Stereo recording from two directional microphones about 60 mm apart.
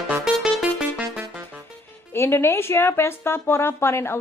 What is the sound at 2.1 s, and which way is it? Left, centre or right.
A woman's voice, left.